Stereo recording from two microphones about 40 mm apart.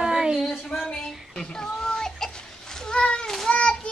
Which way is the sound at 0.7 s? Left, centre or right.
Centre.